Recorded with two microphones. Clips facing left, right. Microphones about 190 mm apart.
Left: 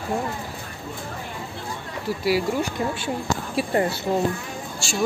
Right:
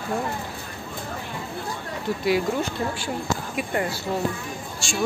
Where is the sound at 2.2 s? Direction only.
5° left (ahead or behind).